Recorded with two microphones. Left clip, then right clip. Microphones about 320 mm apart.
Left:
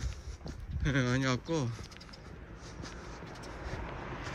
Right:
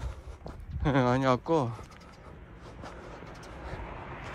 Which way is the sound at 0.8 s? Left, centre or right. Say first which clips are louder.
Right 6 dB; centre.